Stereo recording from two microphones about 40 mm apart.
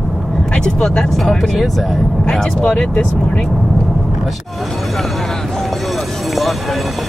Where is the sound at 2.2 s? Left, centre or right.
Centre.